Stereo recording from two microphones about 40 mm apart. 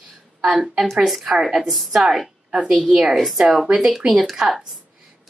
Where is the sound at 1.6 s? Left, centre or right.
Centre.